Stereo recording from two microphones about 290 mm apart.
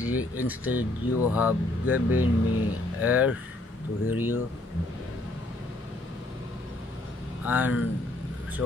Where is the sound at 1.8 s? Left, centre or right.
Left.